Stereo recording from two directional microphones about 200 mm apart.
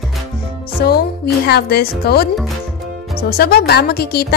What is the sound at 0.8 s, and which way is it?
Speech, 50° left (ahead or behind).